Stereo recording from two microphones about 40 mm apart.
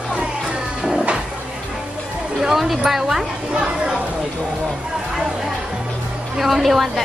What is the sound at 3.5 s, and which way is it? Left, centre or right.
Speech, centre.